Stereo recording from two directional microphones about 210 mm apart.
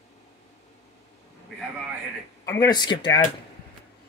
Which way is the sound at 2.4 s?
15° left (ahead or behind).